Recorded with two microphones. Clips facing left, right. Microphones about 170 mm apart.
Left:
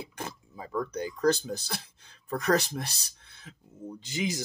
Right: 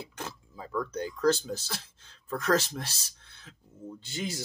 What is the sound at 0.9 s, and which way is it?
Speech, 15° left (ahead or behind).